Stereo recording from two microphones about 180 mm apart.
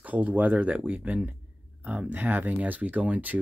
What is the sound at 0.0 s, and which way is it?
Speech, 10° right (ahead or behind).